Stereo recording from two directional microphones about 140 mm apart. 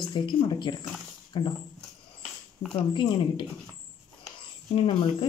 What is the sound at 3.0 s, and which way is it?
Speech, 35° left (ahead or behind).